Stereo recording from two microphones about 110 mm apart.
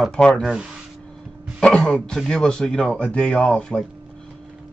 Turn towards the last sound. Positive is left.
turn(degrees=5)  # may be behind; listen again after turning